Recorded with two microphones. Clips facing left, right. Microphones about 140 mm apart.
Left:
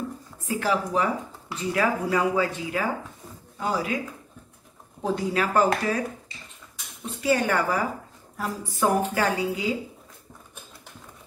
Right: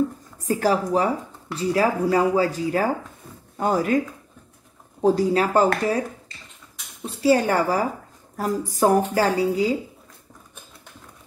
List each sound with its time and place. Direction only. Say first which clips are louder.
0.5 s speech: right 5 dB; 40° right (ahead or behind)
3.5 s speech: right 7 dB; 50° right (ahead or behind)
5.0 s speech: right 7 dB; 35° right (ahead or behind)
7.0 s speech: right 5 dB; 35° right (ahead or behind)